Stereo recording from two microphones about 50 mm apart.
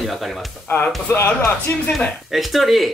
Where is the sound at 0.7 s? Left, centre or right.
Left.